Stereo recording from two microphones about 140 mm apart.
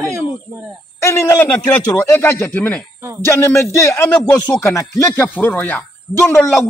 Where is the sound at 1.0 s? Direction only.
20° left (ahead or behind).